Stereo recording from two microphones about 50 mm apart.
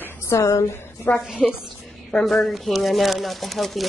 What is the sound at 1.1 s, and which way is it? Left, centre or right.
Speech, left.